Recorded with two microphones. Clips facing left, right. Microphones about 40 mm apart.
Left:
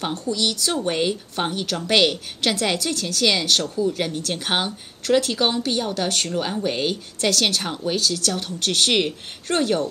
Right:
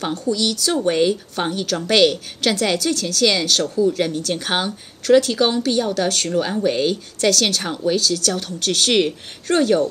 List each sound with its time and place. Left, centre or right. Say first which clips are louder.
0.1 s speech: right 3 dB; left
7.6 s speech: right 4 dB; centre
7.9 s speech: right 3 dB; left